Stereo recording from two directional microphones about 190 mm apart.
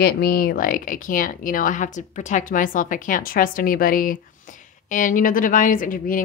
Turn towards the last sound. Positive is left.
turn(degrees=45)  # may be behind; listen again after turning